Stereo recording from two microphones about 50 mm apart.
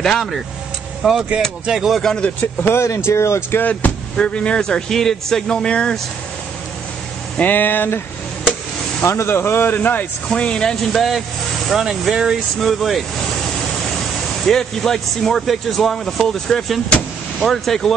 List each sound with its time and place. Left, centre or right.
0.0 s speech: centre
1.0 s speech: centre
2.4 s speech: left
3.5 s speech: left
4.2 s speech: centre
7.3 s speech: left
9.0 s speech: left
9.8 s speech: left
10.2 s speech: left; by 13.0 s centre
14.4 s speech: centre